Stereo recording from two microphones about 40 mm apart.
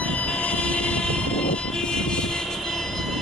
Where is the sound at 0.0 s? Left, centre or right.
Left.